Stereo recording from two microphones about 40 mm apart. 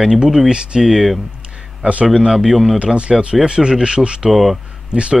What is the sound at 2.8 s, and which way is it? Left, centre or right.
Speech, right.